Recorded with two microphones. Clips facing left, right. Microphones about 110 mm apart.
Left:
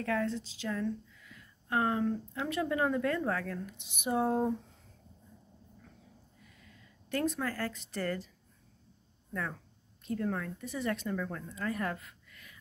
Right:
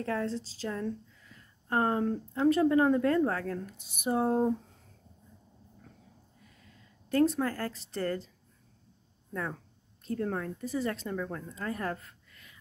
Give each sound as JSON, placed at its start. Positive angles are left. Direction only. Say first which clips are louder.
{"t": 0.0, "sound": "speech", "louder": "even", "side_deg": -30}
{"t": 4.2, "sound": "speech", "louder": "right 2 dB", "side_deg": -25}
{"t": 7.1, "sound": "speech", "louder": "right 6 dB", "side_deg": -30}
{"t": 9.3, "sound": "speech", "louder": "right 2 dB", "side_deg": -25}
{"t": 11.1, "sound": "speech", "louder": "right 1 dB", "side_deg": -20}